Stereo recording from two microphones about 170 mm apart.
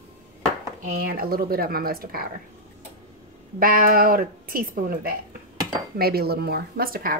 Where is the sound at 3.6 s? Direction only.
55° right (ahead or behind).